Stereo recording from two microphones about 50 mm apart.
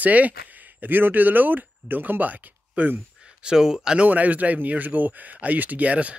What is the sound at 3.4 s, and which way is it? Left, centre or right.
Speech, centre.